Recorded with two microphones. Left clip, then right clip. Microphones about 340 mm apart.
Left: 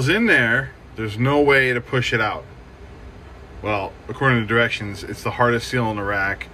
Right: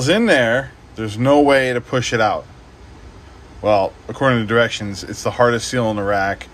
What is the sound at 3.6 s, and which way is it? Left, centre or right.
Speech, centre.